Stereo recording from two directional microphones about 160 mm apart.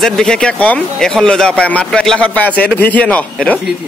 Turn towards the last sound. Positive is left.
turn(degrees=10)  # may be behind; listen again after turning